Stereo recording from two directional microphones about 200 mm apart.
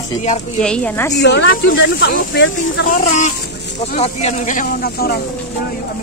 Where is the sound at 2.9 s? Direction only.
35° left (ahead or behind).